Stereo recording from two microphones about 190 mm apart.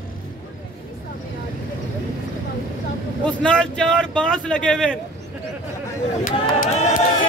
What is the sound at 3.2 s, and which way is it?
A man's voice, 5° left (ahead or behind).